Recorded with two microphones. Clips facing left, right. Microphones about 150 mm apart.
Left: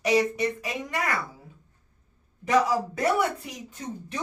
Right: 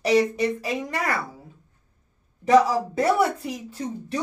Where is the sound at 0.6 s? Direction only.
35° right (ahead or behind).